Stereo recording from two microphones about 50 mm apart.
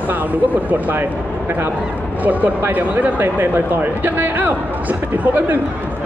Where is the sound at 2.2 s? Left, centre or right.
Right.